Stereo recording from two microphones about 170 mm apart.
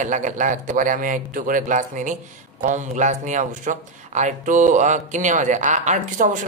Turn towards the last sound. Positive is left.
turn(degrees=-45)  # may be behind; listen again after turning